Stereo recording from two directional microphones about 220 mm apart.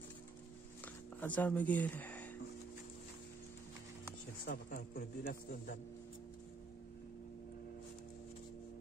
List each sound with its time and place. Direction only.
1.2 s speech: 5° left (ahead or behind)
4.5 s a man's voice: 40° left (ahead or behind)